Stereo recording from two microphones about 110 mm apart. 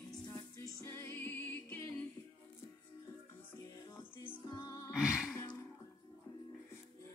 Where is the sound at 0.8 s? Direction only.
20° left (ahead or behind).